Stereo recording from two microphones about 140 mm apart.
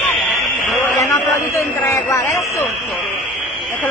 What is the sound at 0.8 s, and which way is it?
A man's voice, 15° left (ahead or behind).